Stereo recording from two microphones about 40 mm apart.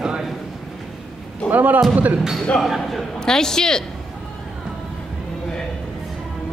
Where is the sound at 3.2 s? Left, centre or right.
Centre.